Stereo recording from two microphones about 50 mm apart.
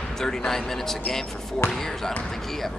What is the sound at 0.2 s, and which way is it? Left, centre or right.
Speech, centre.